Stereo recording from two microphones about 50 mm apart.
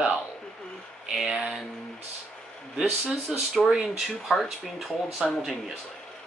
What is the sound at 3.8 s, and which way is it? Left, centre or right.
Speech, centre.